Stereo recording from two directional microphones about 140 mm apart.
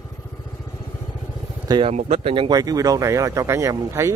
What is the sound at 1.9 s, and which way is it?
Speech, 50° right (ahead or behind).